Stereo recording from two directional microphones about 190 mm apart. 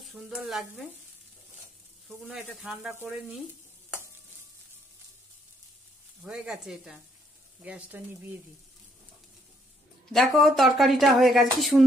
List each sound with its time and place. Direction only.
0.0 s speech: centre (ahead or behind)
2.0 s speech: centre (ahead or behind)
6.2 s speech: 5° right (ahead or behind)
10.1 s speech: centre (ahead or behind)